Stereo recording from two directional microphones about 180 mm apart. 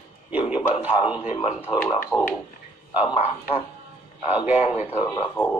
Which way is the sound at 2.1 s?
15° left (ahead or behind).